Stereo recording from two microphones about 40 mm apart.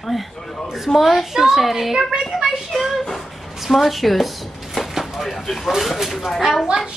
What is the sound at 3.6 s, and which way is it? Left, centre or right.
Speech, centre.